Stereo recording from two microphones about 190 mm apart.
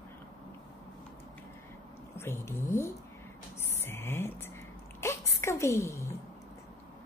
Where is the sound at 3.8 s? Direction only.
10° left (ahead or behind).